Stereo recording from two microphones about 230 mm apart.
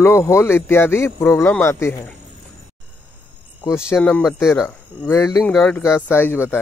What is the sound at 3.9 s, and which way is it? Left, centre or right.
Speech, centre.